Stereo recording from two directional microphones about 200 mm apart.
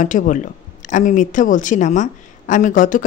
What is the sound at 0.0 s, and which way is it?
Speech, 40° left (ahead or behind).